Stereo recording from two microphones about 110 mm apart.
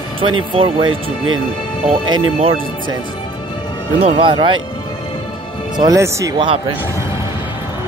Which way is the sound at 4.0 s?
50° right (ahead or behind).